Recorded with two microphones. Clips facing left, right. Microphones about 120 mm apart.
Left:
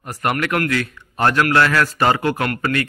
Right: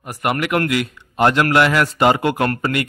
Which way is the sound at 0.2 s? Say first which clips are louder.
Right 1 dB; 10° right (ahead or behind).